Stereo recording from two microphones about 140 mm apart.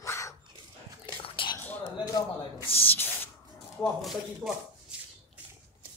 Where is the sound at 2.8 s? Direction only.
15° left (ahead or behind).